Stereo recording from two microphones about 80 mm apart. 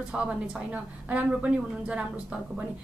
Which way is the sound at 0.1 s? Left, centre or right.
Centre.